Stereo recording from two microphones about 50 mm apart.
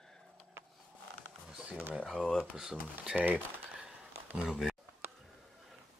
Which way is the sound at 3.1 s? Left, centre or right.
Right.